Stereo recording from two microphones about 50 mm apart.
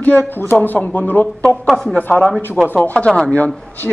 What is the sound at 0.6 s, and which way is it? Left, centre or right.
Speech, left.